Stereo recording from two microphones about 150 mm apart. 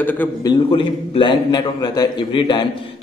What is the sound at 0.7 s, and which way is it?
A man's voice, 35° left (ahead or behind).